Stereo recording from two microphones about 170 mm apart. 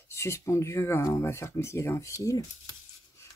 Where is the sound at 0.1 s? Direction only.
15° left (ahead or behind).